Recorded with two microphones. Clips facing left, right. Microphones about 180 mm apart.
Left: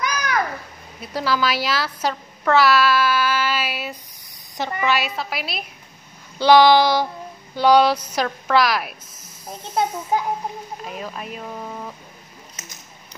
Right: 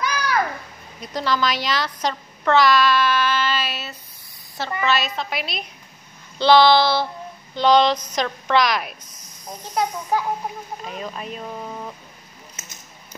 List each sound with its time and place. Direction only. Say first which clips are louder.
1.0 s speech: left 1 dB; 5° left (ahead or behind)
9.5 s a child's voice: left 1 dB; 25° left (ahead or behind)
10.9 s speech: right 1 dB; 5° left (ahead or behind)